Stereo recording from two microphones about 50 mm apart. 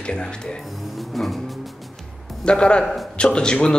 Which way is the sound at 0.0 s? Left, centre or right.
Centre.